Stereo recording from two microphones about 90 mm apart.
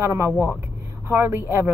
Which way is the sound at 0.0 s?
30° right (ahead or behind).